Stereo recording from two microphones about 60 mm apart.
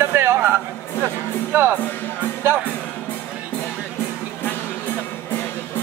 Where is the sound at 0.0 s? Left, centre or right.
Right.